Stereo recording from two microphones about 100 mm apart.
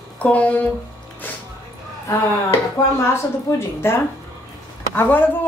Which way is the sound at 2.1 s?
25° left (ahead or behind).